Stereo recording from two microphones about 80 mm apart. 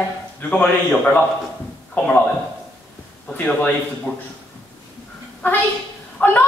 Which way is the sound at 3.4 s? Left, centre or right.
Centre.